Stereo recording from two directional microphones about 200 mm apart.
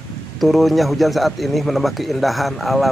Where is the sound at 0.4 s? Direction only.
Centre (ahead or behind).